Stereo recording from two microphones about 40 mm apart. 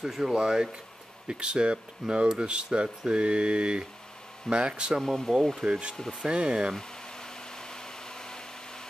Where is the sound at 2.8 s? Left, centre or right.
Centre.